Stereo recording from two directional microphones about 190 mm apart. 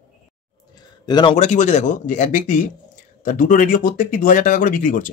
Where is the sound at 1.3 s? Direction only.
40° left (ahead or behind).